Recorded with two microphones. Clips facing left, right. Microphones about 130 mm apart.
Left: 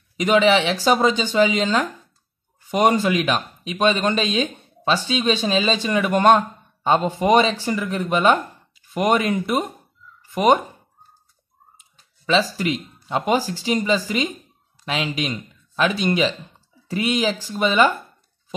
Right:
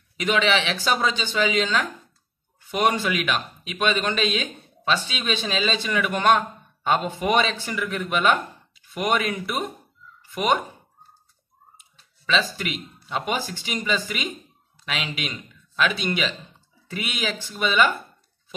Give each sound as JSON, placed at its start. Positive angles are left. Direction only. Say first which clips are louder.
{"t": 0.2, "sound": "speech", "louder": "left 6 dB", "side_deg": 40}
{"t": 12.5, "sound": "speech", "louder": "left 7 dB", "side_deg": 35}